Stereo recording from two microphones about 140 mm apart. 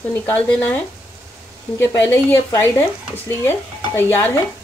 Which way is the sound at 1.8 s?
20° left (ahead or behind).